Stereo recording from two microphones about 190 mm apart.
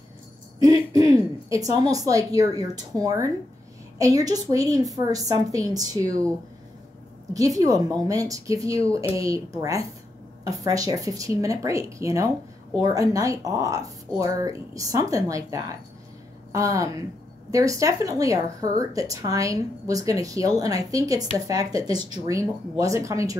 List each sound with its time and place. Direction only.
0.6 s a sound: 20° right (ahead or behind)
1.5 s a woman's voice: 20° right (ahead or behind)
7.3 s a woman's voice: 20° right (ahead or behind)